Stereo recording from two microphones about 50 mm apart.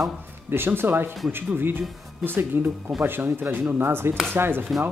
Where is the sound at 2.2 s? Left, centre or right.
Right.